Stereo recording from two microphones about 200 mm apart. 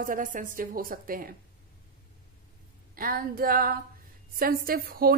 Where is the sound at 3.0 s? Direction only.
45° right (ahead or behind).